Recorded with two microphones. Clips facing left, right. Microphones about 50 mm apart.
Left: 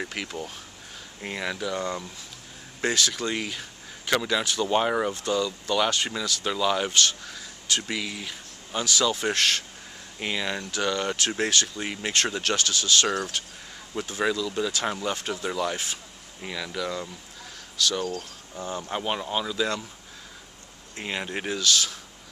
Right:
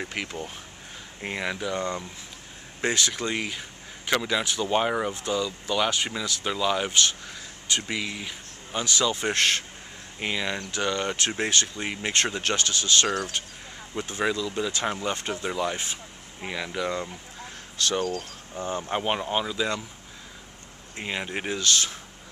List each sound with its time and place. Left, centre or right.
0.1 s speech: centre
6.9 s speech: centre
9.3 s speech: right
10.1 s speech: centre
12.4 s speech: right
14.3 s speech: centre
21.0 s speech: centre